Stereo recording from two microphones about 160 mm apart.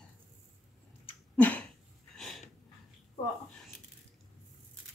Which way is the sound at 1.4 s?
10° left (ahead or behind).